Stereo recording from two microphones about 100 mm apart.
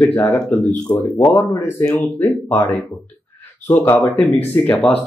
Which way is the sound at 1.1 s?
30° left (ahead or behind).